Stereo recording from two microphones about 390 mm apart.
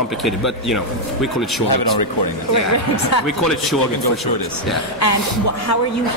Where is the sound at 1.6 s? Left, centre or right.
Left.